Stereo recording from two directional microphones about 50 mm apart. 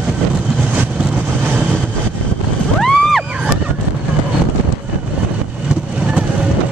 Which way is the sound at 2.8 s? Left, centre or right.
Centre.